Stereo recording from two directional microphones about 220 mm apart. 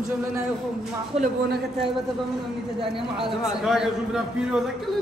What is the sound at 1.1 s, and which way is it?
Speech, 30° right (ahead or behind).